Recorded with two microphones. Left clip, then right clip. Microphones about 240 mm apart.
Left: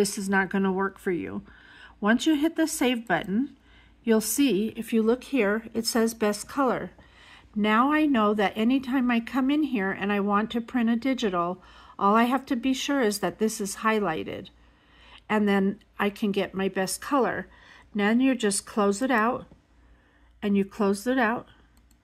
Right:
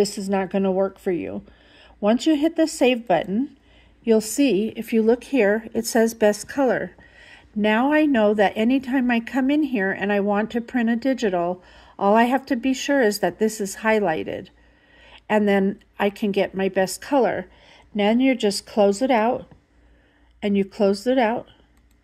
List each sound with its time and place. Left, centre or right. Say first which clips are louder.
0.2 s speech: right 2 dB; centre
1.2 s a sound: right 5 dB; centre
2.3 s a woman's voice: right 5 dB; centre
17.6 s a sound: right 5 dB; left
18.4 s speech: right 6 dB; centre
20.3 s speech: right 5 dB; centre